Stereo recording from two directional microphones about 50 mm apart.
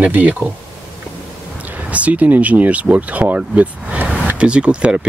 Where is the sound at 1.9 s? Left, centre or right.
Right.